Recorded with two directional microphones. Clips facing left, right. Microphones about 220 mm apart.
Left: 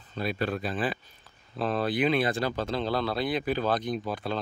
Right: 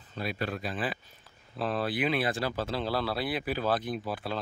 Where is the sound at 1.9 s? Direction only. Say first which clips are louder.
Left 5 dB; 5° right (ahead or behind).